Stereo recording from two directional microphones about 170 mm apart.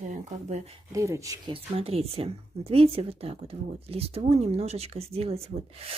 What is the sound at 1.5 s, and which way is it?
Speech, 35° right (ahead or behind).